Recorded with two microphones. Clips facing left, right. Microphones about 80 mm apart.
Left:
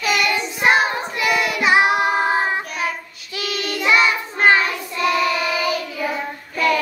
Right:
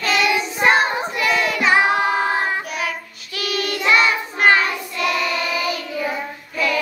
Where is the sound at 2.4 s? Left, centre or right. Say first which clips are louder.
Left 1 dB; left.